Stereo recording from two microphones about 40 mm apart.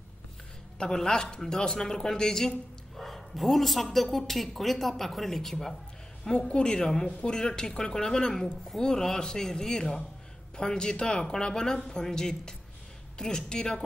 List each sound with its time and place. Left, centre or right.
0.7 s speech: centre
6.3 s speech: left